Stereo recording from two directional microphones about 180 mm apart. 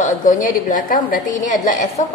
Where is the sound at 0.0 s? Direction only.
45° left (ahead or behind).